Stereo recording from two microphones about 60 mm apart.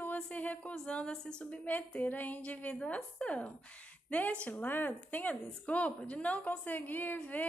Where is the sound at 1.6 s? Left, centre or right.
Left.